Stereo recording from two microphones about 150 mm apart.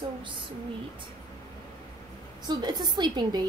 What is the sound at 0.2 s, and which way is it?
Speech, 30° right (ahead or behind).